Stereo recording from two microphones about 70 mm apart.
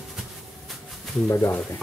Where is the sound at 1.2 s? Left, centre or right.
Left.